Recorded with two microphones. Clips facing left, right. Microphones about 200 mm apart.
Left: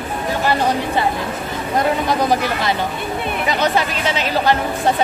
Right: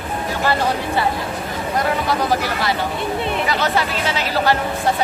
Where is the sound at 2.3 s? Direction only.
20° left (ahead or behind).